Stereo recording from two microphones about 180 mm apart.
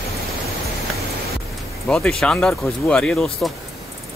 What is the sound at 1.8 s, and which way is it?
Speech, 5° left (ahead or behind).